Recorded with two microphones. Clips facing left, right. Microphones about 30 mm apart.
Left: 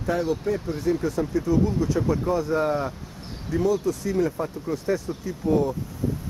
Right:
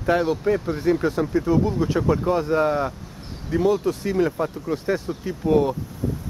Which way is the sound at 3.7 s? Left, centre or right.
Right.